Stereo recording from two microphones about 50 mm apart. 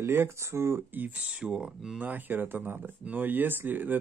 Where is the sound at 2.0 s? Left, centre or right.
Right.